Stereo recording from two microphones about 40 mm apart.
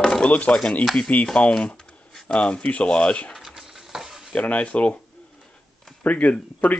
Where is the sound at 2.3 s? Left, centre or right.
Left.